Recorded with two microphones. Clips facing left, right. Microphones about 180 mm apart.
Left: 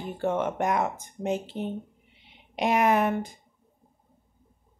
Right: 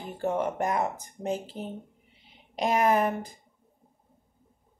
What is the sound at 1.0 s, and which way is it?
Speech, 35° right (ahead or behind).